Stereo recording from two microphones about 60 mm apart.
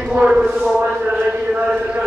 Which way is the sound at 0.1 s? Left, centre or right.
Centre.